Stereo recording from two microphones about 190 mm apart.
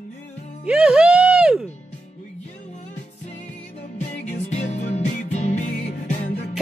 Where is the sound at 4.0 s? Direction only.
40° left (ahead or behind).